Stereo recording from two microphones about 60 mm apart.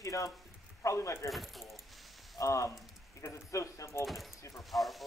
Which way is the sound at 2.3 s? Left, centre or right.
Left.